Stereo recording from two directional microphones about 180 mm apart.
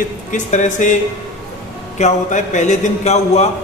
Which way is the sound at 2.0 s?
40° left (ahead or behind).